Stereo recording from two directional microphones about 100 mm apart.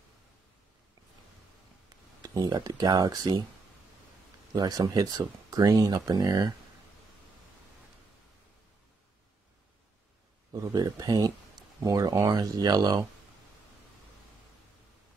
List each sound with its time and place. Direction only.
2.2 s speech: 45° right (ahead or behind)
4.6 s speech: 45° right (ahead or behind)
10.5 s a sound: 35° right (ahead or behind)
10.8 s speech: 40° right (ahead or behind)